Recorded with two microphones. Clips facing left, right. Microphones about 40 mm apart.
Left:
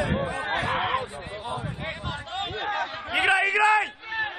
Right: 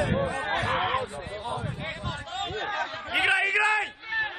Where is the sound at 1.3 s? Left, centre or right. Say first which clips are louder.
Even; left; by 4.3 s centre.